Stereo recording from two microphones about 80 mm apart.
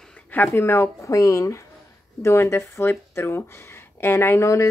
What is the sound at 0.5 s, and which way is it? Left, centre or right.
Speech, left.